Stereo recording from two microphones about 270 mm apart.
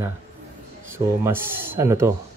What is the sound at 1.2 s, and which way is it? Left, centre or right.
Speech, centre.